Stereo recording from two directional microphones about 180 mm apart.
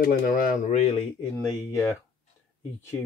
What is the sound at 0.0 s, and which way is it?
Speech, 50° left (ahead or behind).